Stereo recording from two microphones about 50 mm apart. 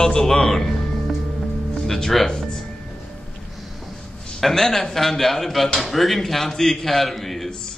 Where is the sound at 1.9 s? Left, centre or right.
Centre.